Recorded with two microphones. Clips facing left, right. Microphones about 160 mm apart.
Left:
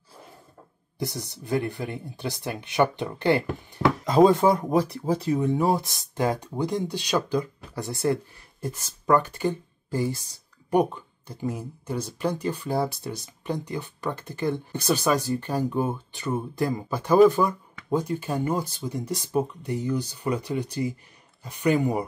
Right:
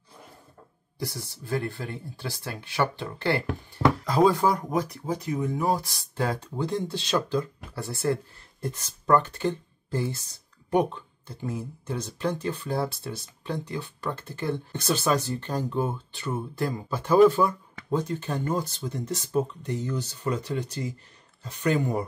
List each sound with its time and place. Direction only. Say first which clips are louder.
0.9 s speech: left 3 dB; 20° left (ahead or behind)